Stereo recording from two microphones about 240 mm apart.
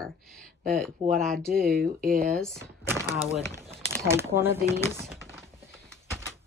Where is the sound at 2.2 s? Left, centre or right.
Centre.